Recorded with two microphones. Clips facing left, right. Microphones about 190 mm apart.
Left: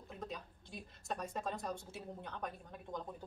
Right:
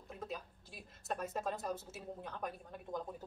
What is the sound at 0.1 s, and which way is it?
A woman's voice, 5° right (ahead or behind).